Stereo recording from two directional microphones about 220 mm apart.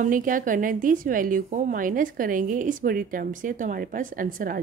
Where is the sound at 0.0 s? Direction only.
35° right (ahead or behind).